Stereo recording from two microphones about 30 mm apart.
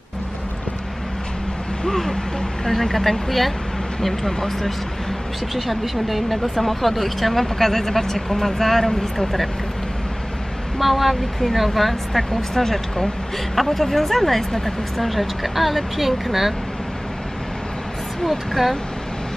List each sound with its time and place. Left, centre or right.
1.9 s a sound: centre
2.6 s speech: centre
5.5 s speech: centre
10.8 s speech: centre
18.2 s speech: centre